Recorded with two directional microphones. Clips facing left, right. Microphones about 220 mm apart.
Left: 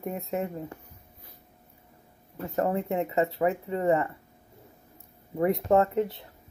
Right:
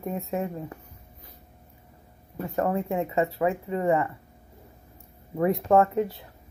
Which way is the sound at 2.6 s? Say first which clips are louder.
Right 1 dB; 25° left (ahead or behind).